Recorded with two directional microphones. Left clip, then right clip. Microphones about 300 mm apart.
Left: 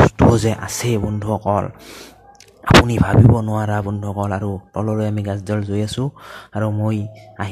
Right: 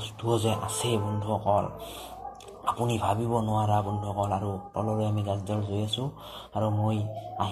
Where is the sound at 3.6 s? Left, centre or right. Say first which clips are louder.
Left 4 dB; left.